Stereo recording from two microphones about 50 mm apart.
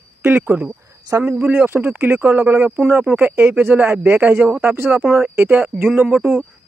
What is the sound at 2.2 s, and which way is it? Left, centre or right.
Speech, right.